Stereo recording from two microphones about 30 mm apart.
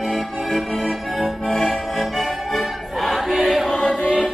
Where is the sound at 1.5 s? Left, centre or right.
Centre.